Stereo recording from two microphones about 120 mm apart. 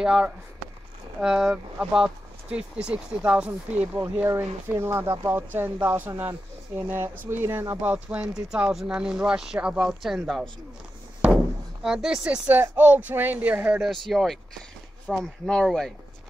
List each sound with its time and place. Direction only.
0.0 s speech: 5° right (ahead or behind)
4.0 s speech: 20° right (ahead or behind); by 10.4 s centre (ahead or behind)
11.8 s speech: 5° right (ahead or behind)
12.4 s speech: 15° right (ahead or behind)
13.8 s speech: centre (ahead or behind)